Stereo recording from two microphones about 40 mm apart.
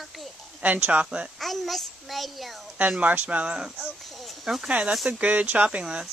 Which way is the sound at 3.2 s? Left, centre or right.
Right.